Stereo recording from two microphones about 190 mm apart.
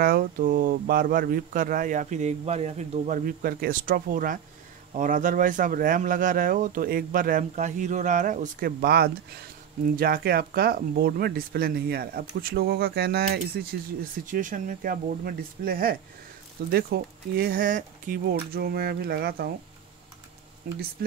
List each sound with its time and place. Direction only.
0.0 s speech: 50° right (ahead or behind)